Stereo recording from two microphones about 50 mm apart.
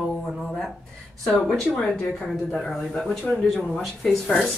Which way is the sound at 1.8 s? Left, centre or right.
Centre.